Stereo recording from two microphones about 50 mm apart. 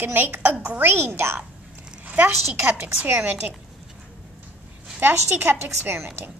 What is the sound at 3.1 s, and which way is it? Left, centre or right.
Speech, right.